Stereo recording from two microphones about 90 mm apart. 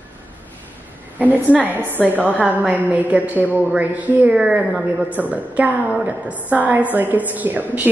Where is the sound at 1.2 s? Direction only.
15° right (ahead or behind).